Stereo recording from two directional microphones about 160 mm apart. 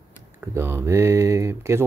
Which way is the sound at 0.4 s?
15° right (ahead or behind).